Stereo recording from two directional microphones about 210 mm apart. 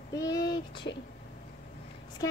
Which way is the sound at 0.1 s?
15° left (ahead or behind).